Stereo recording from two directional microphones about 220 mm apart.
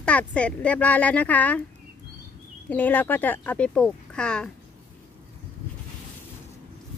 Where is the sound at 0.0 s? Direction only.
5° left (ahead or behind).